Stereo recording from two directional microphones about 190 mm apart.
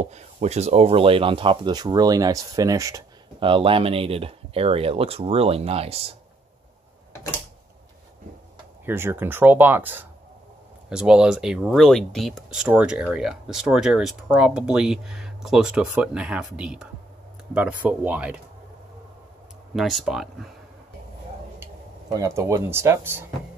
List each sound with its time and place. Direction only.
0.0 s speech: 35° right (ahead or behind)
8.8 s speech: 10° right (ahead or behind)
19.7 s speech: centre (ahead or behind)
22.1 s speech: 15° right (ahead or behind)